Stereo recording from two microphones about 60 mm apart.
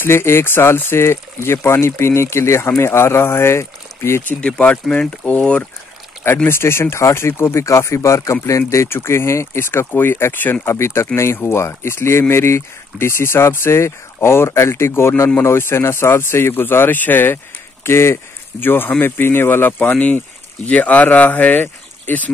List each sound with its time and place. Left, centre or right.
0.0 s speech: left
4.3 s speech: centre
6.2 s speech: left
10.7 s speech: left
17.8 s speech: left